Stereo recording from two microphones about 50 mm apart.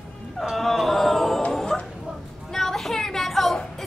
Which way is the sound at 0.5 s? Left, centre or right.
Centre.